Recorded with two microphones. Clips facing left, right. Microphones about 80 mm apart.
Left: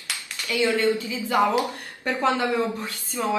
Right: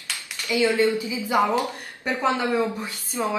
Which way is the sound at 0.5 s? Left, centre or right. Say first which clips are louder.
Right 1 dB; centre.